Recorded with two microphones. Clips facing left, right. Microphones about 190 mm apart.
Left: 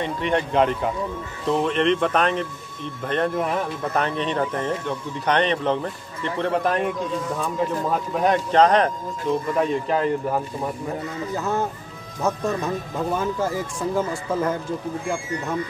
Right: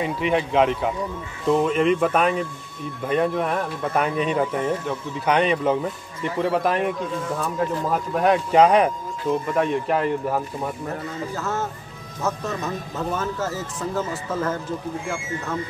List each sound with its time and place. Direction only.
0.0 s speech: 5° right (ahead or behind)
8.1 s speech: centre (ahead or behind)
10.9 s speech: 15° left (ahead or behind)